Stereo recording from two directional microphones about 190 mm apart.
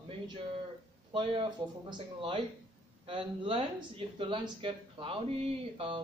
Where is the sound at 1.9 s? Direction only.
30° right (ahead or behind).